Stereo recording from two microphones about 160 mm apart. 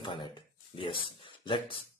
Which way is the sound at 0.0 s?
30° left (ahead or behind).